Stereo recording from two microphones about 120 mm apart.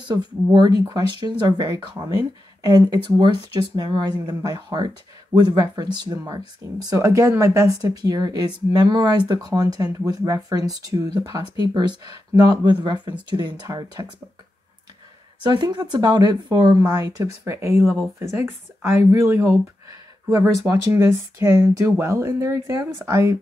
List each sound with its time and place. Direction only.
0.0 s speech: 40° right (ahead or behind)
15.6 s speech: 35° right (ahead or behind)